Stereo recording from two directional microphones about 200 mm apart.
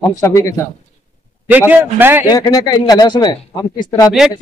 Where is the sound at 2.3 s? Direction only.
20° left (ahead or behind).